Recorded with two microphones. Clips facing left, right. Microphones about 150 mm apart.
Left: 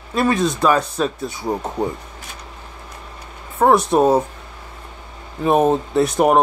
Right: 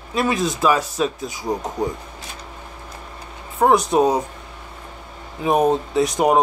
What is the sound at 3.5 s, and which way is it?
Speech, centre (ahead or behind).